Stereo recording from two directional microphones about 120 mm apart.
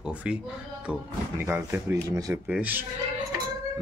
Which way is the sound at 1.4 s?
20° right (ahead or behind).